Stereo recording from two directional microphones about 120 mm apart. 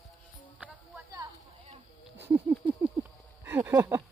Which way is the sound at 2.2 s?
15° right (ahead or behind).